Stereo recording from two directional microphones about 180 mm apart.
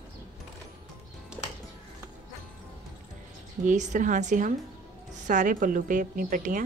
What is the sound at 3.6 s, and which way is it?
Speech, 40° right (ahead or behind).